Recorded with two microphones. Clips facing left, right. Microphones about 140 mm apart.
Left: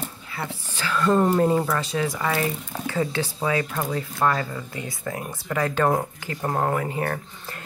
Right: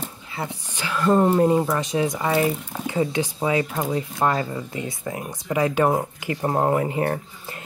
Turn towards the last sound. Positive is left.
turn(degrees=-25)  # may be behind; listen again after turning